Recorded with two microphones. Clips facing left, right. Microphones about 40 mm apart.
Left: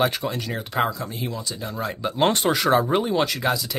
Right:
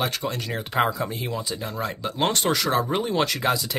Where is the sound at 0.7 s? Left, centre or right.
Centre.